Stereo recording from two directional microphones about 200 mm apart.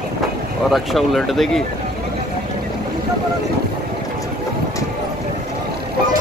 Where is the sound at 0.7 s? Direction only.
Centre (ahead or behind).